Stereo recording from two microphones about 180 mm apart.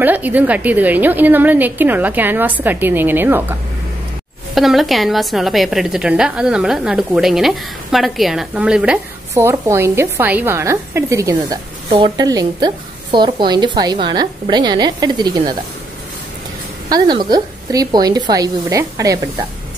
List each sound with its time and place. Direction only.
0.0 s a woman's voice: 10° right (ahead or behind)
4.6 s a woman's voice: centre (ahead or behind)
9.3 s a woman's voice: 15° right (ahead or behind)
16.9 s a woman's voice: 25° right (ahead or behind)